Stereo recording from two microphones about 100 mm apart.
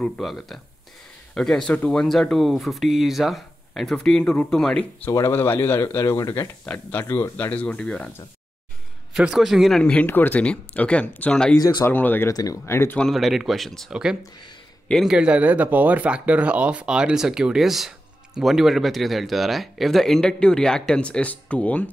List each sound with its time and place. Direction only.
0.0 s speech: centre (ahead or behind)
5.1 s speech: 25° left (ahead or behind)
6.6 s speech: 15° left (ahead or behind)
9.1 s speech: 5° right (ahead or behind)
11.8 s speech: 20° left (ahead or behind)
12.3 s speech: 35° left (ahead or behind)
13.1 s speech: centre (ahead or behind)